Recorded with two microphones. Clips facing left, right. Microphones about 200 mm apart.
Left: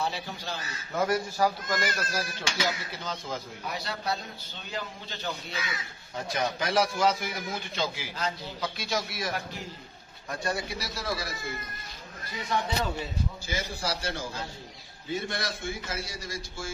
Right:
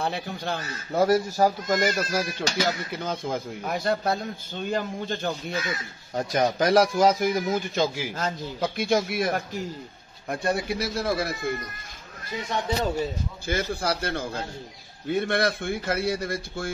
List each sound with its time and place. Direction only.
0.0 s speech: 55° right (ahead or behind)
0.9 s speech: 35° right (ahead or behind)
3.0 s a man's voice: 55° right (ahead or behind)
10.4 s speech: 55° right (ahead or behind)
12.8 s speech: 40° right (ahead or behind); by 16.7 s 60° right (ahead or behind)